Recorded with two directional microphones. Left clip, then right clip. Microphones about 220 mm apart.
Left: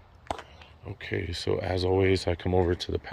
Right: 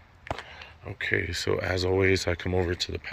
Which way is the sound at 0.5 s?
Centre (ahead or behind).